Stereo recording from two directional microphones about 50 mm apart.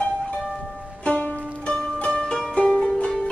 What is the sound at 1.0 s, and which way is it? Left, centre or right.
Music, left.